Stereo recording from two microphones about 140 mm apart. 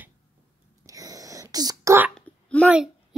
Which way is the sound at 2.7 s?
5° right (ahead or behind).